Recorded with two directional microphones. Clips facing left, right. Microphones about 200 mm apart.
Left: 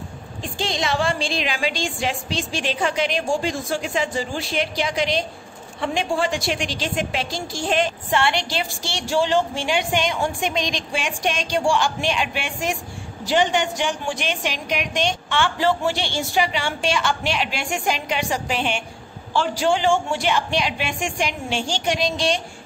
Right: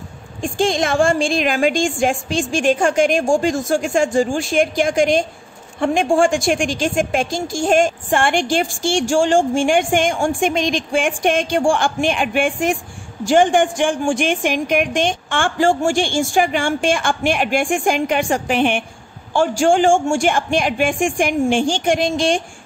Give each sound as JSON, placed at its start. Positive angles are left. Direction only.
{"t": 0.4, "sound": "a woman's voice", "side_deg": -50}